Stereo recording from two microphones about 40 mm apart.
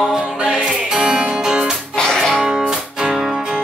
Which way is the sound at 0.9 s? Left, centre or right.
Centre.